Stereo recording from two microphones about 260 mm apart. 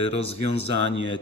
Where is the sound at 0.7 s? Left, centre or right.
Right.